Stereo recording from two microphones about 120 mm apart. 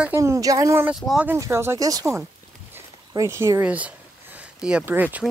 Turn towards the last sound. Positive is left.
turn(degrees=-10)  # may be behind; listen again after turning